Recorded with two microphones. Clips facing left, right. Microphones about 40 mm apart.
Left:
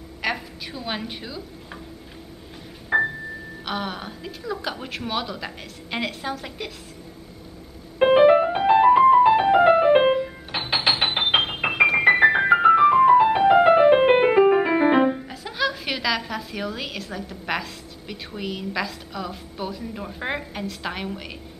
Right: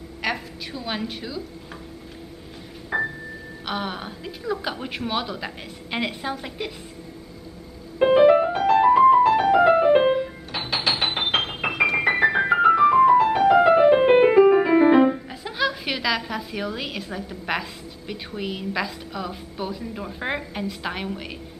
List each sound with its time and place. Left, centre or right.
0.2 s a woman's voice: centre
2.9 s a sound: centre
3.6 s a woman's voice: centre
8.0 s music: left
11.1 s keyboard: centre
15.0 s a woman's voice: centre